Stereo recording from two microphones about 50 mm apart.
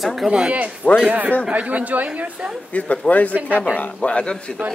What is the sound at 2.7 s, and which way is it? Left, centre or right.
A man's voice, left.